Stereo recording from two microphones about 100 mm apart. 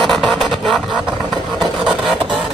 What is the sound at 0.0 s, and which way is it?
Vehicle, centre (ahead or behind).